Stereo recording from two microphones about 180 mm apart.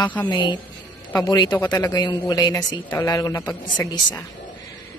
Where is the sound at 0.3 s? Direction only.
25° left (ahead or behind).